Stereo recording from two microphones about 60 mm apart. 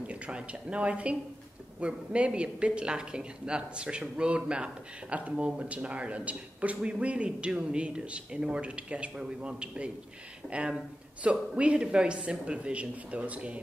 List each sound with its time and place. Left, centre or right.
0.0 s speech: centre